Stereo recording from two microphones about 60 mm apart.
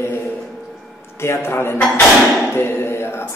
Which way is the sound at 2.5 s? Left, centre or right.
Left.